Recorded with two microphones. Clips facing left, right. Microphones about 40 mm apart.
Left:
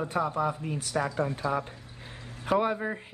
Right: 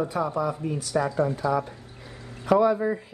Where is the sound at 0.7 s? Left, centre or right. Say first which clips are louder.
Right 4 dB; left.